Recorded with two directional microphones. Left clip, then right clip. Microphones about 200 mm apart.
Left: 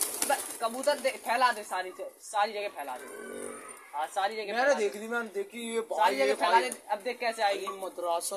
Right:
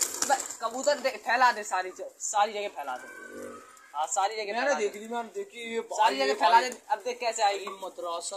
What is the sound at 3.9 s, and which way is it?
Speech, 20° right (ahead or behind).